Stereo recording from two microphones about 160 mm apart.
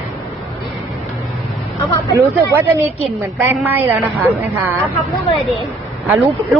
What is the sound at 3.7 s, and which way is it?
A woman's voice, 15° right (ahead or behind).